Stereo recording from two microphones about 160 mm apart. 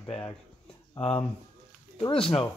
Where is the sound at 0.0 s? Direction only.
25° left (ahead or behind).